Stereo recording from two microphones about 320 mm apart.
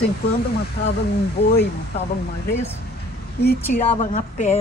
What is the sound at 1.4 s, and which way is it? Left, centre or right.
Speech, left.